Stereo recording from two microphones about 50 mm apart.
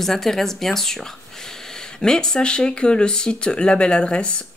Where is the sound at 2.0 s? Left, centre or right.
Centre.